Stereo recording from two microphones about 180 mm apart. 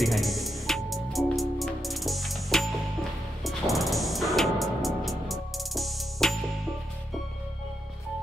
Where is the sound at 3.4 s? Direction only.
Centre (ahead or behind).